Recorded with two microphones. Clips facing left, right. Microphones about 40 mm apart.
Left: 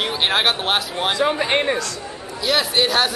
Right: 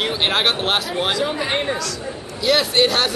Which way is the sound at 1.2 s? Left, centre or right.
Left.